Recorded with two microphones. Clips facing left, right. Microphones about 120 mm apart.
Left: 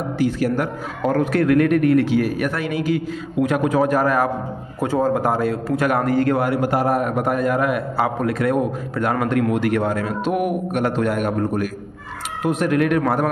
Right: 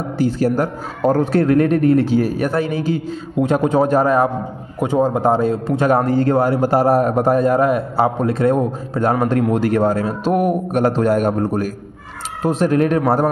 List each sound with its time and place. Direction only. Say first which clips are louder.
0.2 s a man's voice: right 3 dB; 30° right (ahead or behind)